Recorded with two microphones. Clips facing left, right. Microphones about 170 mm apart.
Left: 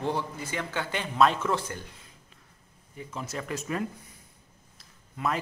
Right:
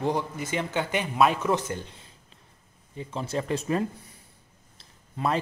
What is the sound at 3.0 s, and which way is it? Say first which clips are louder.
A man's voice: right 6 dB; 30° right (ahead or behind).